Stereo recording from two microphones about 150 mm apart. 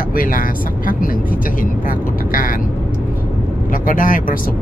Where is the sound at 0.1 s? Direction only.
70° left (ahead or behind).